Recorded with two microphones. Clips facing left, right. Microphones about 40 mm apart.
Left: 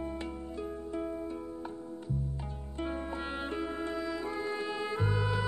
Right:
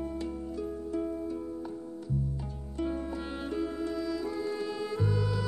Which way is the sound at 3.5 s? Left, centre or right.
Left.